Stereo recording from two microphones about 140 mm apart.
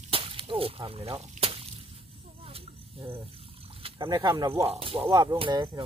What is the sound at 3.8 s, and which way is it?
Speech, 35° right (ahead or behind).